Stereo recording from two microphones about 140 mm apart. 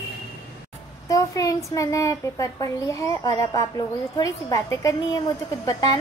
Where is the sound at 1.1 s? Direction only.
25° left (ahead or behind).